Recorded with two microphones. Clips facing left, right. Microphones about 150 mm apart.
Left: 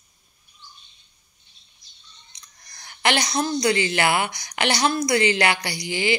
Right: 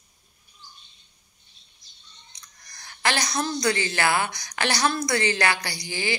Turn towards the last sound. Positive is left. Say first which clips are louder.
# left 5 dB
turn(degrees=15)  # may be behind; listen again after turning